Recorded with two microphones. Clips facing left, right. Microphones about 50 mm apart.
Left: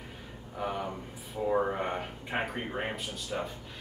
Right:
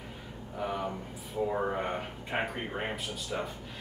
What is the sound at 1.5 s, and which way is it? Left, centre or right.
A man's voice, centre.